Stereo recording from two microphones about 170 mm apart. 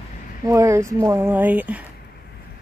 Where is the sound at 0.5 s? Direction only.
15° right (ahead or behind).